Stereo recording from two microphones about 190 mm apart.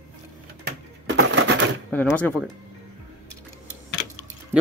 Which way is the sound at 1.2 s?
75° right (ahead or behind).